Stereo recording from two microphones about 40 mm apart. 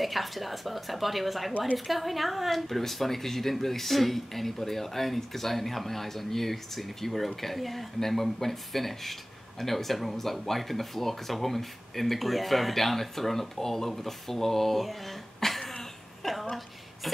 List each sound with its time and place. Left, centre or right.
0.0 s speech: centre